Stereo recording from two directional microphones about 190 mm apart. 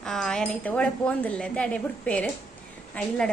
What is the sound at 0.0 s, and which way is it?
Wind chime, centre (ahead or behind).